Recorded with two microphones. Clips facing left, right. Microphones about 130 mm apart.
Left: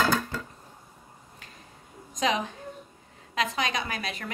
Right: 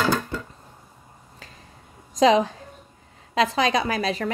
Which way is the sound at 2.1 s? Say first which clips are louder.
Right 10 dB; 35° right (ahead or behind).